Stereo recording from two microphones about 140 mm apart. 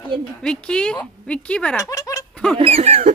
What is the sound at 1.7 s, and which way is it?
Speech, 25° left (ahead or behind).